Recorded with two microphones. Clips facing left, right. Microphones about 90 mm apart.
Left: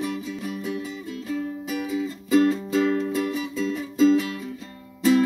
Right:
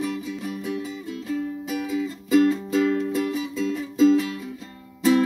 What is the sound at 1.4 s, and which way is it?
Music, 30° left (ahead or behind).